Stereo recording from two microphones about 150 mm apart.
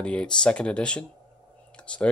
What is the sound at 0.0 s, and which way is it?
Speech, 5° left (ahead or behind).